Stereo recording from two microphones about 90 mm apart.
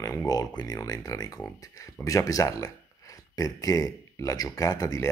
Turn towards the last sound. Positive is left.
turn(degrees=40)  # may be behind; listen again after turning